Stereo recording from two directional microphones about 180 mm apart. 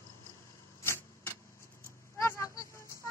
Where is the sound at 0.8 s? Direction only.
10° left (ahead or behind).